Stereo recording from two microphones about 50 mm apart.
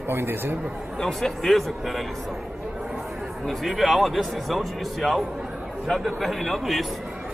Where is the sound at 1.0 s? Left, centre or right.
Centre.